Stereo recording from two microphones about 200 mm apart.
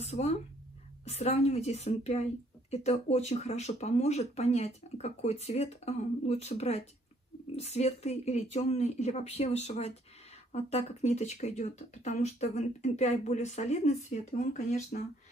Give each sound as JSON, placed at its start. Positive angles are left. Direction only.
{"t": 0.0, "sound": "speech", "side_deg": 30}